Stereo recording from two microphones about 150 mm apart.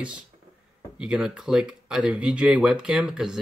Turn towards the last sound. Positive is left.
turn(degrees=-5)  # may be behind; listen again after turning